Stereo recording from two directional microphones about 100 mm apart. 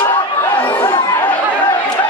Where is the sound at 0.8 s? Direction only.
35° left (ahead or behind).